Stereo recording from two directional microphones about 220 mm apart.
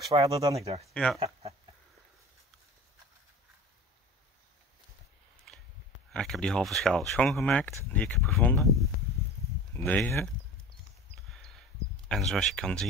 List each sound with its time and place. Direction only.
0.3 s speech: 15° right (ahead or behind)
0.9 s speech: 5° left (ahead or behind)
6.1 s speech: 5° left (ahead or behind)
12.1 s speech: centre (ahead or behind)